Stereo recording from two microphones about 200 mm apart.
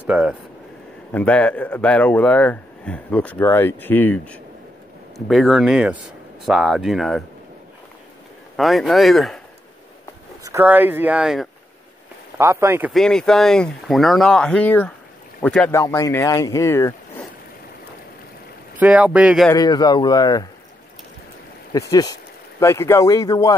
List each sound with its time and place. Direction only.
0.0 s speech: 5° right (ahead or behind)
1.1 s speech: 5° left (ahead or behind)
8.5 s speech: centre (ahead or behind)
10.4 s speech: 10° right (ahead or behind)
12.4 s speech: 15° right (ahead or behind)
12.9 s speech: 5° left (ahead or behind)
18.8 s speech: 5° right (ahead or behind)
19.5 s speech: 20° left (ahead or behind)
21.7 s speech: 15° left (ahead or behind)